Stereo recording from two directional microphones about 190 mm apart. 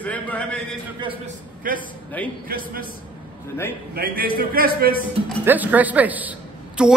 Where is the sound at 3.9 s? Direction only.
50° right (ahead or behind).